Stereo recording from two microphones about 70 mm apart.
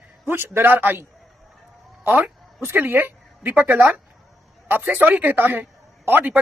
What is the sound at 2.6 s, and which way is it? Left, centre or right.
A man's voice, right.